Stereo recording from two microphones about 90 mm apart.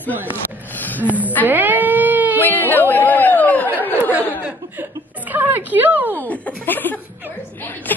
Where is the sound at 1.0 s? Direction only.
15° right (ahead or behind).